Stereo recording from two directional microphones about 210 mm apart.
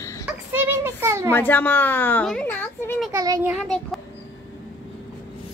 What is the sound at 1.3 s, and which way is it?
Speech, 10° left (ahead or behind).